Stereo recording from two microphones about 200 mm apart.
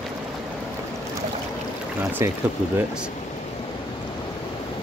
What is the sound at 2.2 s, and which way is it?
Speech, 15° right (ahead or behind).